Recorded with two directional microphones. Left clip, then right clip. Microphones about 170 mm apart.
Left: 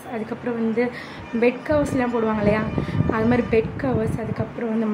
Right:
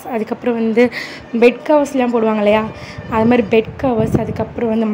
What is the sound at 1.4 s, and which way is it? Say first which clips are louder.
A woman's voice: right 8 dB; 35° right (ahead or behind).